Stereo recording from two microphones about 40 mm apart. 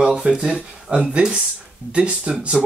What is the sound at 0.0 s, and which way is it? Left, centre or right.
Speech, right.